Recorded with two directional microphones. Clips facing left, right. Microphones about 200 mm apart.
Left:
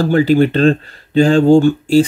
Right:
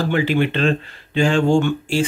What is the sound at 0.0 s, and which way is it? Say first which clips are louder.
Speech: left 7 dB; 40° left (ahead or behind).